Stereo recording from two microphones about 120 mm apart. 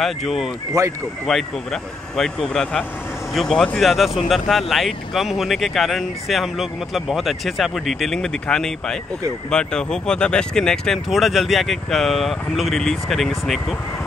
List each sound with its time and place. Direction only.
0.0 s speech: centre (ahead or behind)
0.8 s speech: 30° right (ahead or behind)
1.2 s speech: 5° left (ahead or behind)